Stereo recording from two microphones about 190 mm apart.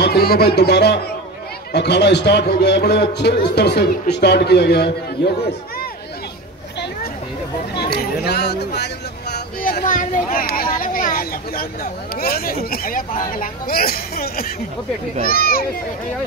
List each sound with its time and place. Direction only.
0.0 s a man's voice: 55° left (ahead or behind)
7.8 s speech: 55° left (ahead or behind)